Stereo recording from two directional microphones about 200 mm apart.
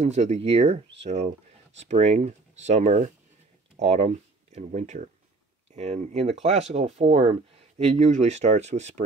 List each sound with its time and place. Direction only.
0.0 s speech: 35° right (ahead or behind)